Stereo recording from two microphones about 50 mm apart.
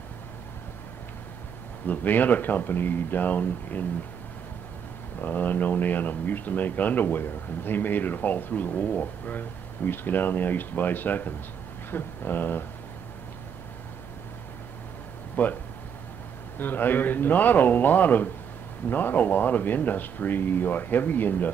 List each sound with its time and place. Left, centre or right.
1.9 s speech: left
5.2 s speech: left
11.9 s a sound: left
15.4 s speech: left
16.5 s speech: left